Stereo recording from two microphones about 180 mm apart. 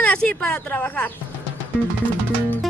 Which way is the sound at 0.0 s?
5° left (ahead or behind).